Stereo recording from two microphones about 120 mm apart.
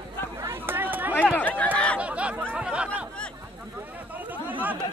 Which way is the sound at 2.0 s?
10° right (ahead or behind).